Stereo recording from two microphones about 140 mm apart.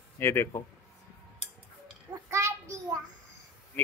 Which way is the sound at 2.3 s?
20° right (ahead or behind).